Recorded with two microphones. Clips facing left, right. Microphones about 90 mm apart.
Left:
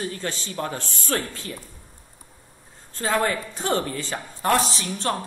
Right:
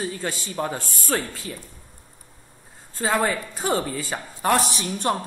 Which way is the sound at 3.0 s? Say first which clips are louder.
Right 1 dB; 10° right (ahead or behind).